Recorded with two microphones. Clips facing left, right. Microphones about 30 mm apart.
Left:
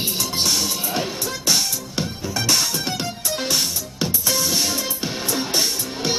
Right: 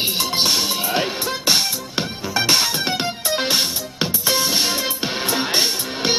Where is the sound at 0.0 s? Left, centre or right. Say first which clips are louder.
Right 3 dB; right.